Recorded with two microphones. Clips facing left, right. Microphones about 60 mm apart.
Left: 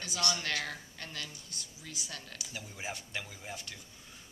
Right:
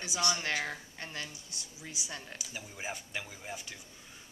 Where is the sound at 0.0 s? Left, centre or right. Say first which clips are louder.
Right 2 dB; centre.